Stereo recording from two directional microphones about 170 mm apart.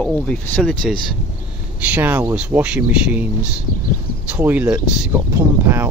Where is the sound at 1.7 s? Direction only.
10° right (ahead or behind).